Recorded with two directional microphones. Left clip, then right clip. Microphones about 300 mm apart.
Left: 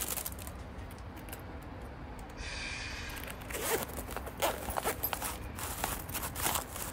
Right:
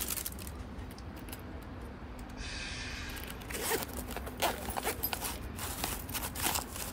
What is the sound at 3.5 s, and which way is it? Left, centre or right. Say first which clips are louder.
Zipper: left 1 dB; centre.